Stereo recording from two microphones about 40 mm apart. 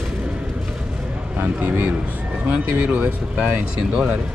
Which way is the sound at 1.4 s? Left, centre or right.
Right.